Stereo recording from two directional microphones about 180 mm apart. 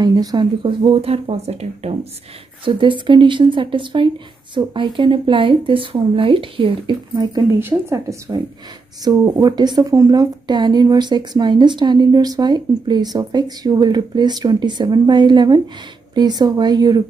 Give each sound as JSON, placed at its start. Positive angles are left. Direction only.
{"t": 0.0, "sound": "speech", "side_deg": -20}